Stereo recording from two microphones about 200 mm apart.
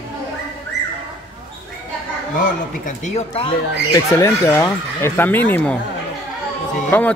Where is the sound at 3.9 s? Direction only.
15° left (ahead or behind).